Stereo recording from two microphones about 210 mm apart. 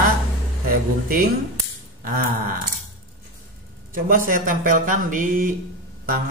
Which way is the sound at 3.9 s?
40° right (ahead or behind).